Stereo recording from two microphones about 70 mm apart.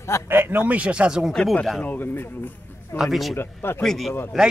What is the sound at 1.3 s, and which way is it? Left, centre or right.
Speech, centre.